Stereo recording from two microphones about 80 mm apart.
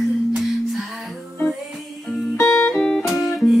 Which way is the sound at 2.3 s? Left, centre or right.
Left.